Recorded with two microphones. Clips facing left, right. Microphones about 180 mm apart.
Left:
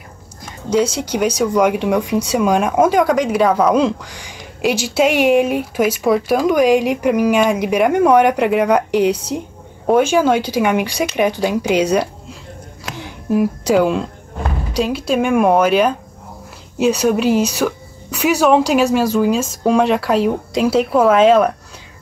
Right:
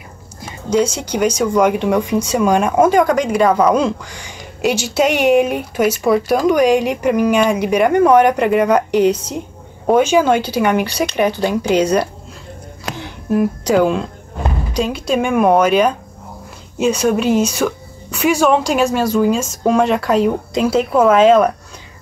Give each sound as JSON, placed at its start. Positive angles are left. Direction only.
{"t": 0.7, "sound": "speech", "side_deg": 5}